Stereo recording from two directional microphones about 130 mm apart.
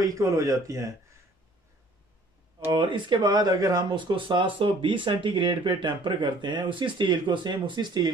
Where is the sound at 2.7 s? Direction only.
40° right (ahead or behind).